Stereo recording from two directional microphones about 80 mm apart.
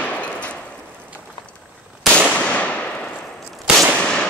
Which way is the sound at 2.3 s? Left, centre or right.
Centre.